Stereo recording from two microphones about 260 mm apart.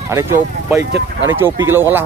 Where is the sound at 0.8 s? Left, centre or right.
Right.